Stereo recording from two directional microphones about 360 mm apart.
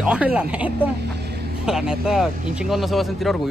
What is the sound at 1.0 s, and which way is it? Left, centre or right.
Vehicle, right.